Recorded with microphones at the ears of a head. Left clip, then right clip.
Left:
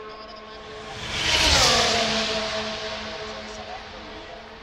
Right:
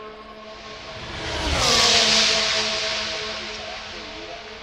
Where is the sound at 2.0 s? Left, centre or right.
Right.